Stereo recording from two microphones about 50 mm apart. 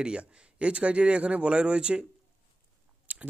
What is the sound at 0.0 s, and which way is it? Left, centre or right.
Speech, right.